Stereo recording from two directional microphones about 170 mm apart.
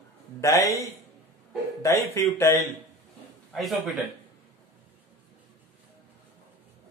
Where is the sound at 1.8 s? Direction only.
20° left (ahead or behind).